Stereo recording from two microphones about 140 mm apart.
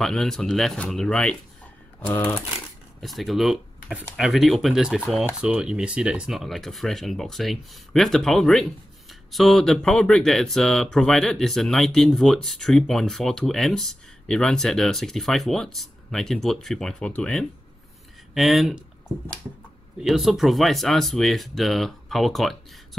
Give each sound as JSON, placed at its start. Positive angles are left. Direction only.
{"t": 0.0, "sound": "speech", "side_deg": 5}
{"t": 3.0, "sound": "speech", "side_deg": 0}
{"t": 20.0, "sound": "speech", "side_deg": 0}